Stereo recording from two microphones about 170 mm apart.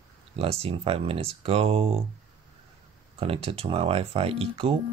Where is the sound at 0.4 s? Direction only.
35° right (ahead or behind).